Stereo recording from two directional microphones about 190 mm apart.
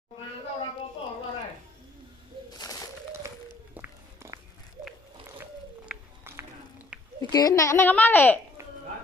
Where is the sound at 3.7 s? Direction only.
10° right (ahead or behind).